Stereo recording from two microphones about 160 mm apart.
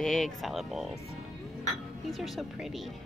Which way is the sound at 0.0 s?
Centre (ahead or behind).